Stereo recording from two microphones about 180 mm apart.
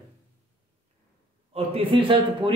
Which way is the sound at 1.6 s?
30° right (ahead or behind).